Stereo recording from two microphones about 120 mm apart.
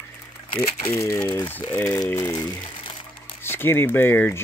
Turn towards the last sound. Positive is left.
turn(degrees=20)  # may be behind; listen again after turning